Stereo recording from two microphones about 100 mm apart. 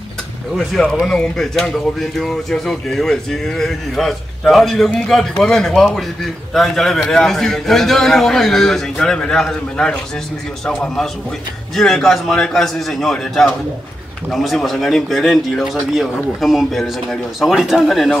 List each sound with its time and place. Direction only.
0.6 s speech: 5° left (ahead or behind)
11.7 s speech: centre (ahead or behind)